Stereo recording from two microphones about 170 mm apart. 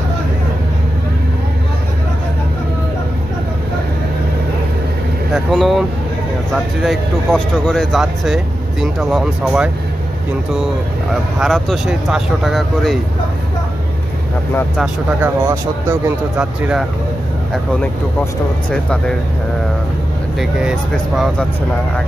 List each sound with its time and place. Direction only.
5.3 s speech: centre (ahead or behind)
11.3 s speech: centre (ahead or behind)
14.8 s speech: 10° right (ahead or behind)
18.7 s speech: 5° left (ahead or behind)
20.3 s speech: centre (ahead or behind)